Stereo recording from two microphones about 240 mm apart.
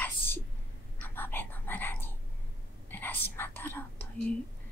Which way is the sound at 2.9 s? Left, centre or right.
Centre.